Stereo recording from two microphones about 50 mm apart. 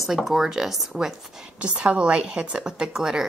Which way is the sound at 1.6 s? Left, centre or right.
Right.